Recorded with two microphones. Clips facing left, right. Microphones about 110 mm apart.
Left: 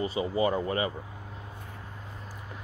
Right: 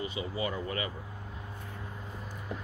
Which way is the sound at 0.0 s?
35° left (ahead or behind).